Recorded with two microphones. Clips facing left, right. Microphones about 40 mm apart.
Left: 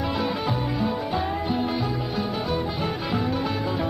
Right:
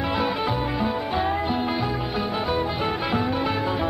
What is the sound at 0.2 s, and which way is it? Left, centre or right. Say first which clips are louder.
Music: right 2 dB; right.